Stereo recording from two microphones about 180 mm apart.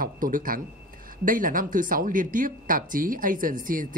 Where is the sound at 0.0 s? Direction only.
50° right (ahead or behind).